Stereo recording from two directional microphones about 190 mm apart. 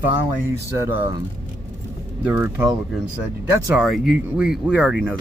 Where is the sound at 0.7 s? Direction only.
10° right (ahead or behind).